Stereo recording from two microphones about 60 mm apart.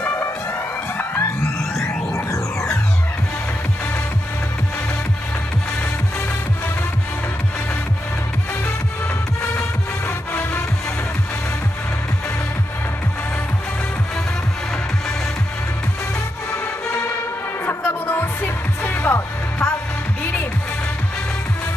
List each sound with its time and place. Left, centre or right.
0.9 s music: left
2.1 s music: left
10.0 s music: left
17.6 s music: left